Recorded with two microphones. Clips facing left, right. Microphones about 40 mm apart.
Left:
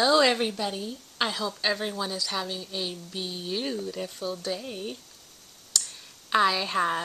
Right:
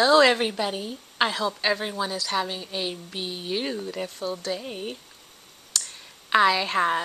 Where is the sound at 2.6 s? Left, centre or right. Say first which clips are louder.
Right 3 dB; right.